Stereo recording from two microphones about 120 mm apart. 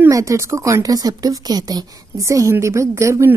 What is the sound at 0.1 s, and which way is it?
Speech, 25° right (ahead or behind).